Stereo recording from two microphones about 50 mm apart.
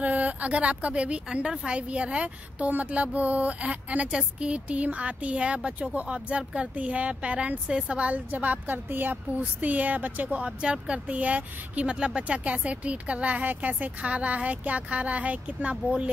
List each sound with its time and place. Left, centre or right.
0.0 s speech: right
10.4 s speech: right